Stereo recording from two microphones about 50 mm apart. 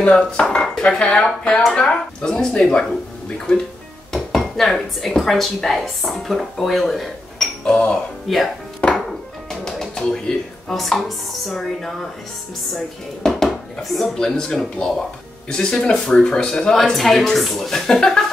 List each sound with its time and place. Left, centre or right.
0.1 s speech: centre
0.6 s dishes: centre
0.9 s speech: centre
4.1 s dishes: centre
5.1 s a woman's voice: centre
7.6 s speech: centre
8.3 s a woman's voice: centre
8.8 s music: left
9.5 s music: centre
10.7 s a woman's voice: centre
13.2 s speech: centre
16.8 s a woman's voice: centre